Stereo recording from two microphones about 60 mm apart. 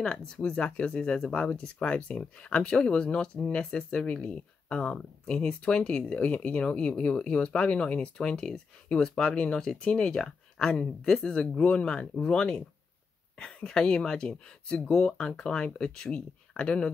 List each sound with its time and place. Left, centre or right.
0.0 s speech: centre